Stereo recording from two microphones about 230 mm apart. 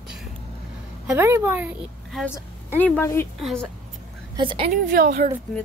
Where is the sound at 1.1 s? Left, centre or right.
Centre.